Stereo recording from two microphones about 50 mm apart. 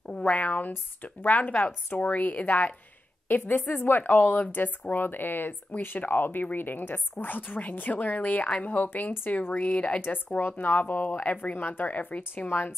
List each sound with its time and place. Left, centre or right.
0.2 s a woman's voice: left
9.7 s speech: left
10.6 s a woman's voice: left
12.4 s speech: left